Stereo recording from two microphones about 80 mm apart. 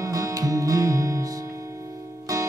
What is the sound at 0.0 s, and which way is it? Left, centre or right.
Music, right.